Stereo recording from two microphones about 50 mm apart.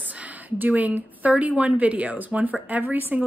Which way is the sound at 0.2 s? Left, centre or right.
Right.